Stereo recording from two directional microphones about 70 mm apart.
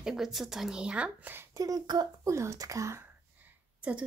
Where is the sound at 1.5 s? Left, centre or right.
Right.